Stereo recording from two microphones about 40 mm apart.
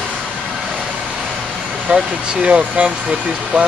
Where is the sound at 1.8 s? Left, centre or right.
Right.